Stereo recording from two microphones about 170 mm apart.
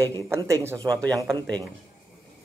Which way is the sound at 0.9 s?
5° left (ahead or behind).